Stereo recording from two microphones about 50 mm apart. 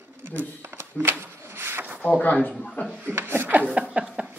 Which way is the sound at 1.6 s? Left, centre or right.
Right.